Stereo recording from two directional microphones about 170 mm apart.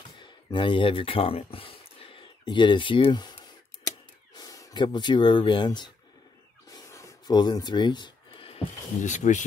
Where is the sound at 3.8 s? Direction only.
20° left (ahead or behind).